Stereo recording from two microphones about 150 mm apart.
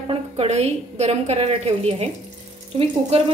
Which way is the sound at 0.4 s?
45° right (ahead or behind).